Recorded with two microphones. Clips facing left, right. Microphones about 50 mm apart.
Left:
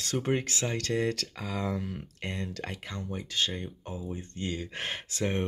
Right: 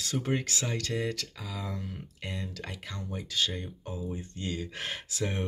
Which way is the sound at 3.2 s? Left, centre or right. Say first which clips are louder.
Even; left.